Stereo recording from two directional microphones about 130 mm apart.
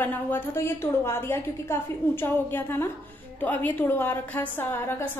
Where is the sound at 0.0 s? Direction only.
15° left (ahead or behind).